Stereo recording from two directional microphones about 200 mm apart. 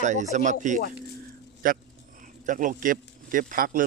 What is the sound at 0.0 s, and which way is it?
Speech, 35° right (ahead or behind).